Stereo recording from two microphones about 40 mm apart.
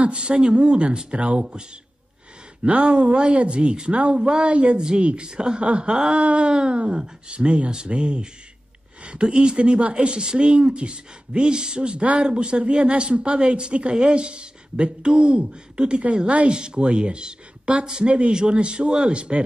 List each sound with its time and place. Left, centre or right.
0.0 s a woman's voice: right
2.7 s a woman's voice: right